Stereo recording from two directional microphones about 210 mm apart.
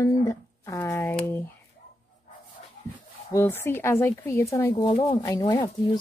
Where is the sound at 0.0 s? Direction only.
15° left (ahead or behind).